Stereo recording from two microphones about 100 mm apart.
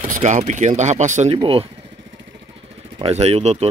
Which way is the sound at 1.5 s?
70° right (ahead or behind).